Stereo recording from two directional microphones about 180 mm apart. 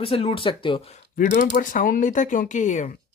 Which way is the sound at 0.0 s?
30° left (ahead or behind).